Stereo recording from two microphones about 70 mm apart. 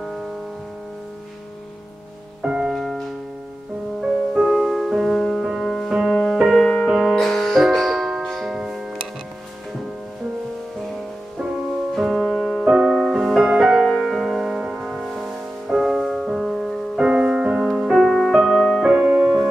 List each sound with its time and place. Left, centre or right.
0.0 s music: centre
2.4 s music: centre
5.9 s music: centre
6.5 s music: centre
11.9 s music: centre
17.0 s music: centre
18.9 s music: centre